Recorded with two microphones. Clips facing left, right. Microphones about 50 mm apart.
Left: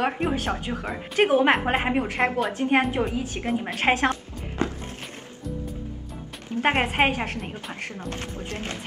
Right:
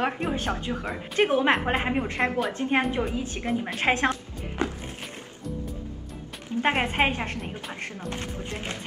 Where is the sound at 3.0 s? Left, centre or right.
Centre.